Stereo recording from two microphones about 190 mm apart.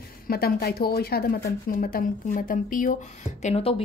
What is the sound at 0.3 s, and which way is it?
A woman's voice, 55° left (ahead or behind).